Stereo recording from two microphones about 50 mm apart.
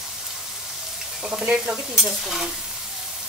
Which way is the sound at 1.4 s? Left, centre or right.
Centre.